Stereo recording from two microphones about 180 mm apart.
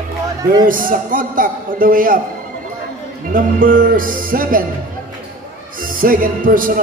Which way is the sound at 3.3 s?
50° right (ahead or behind).